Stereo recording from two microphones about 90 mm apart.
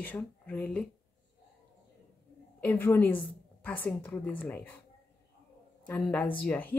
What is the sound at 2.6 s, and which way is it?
A woman's voice, 20° left (ahead or behind).